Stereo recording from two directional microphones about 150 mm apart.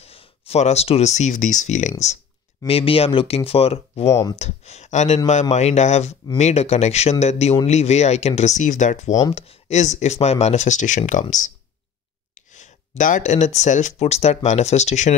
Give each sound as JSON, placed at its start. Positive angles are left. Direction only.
{"t": 0.0, "sound": "speech", "side_deg": 40}
{"t": 2.6, "sound": "speech", "side_deg": 40}
{"t": 4.1, "sound": "speech", "side_deg": 20}
{"t": 4.4, "sound": "speech", "side_deg": 45}
{"t": 12.4, "sound": "a sound", "side_deg": 55}
{"t": 13.6, "sound": "speech", "side_deg": 55}